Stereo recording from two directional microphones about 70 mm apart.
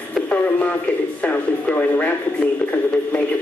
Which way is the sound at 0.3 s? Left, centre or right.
Centre.